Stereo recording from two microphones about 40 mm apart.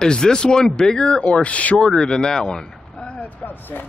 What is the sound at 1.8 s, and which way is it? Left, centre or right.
Speech, centre.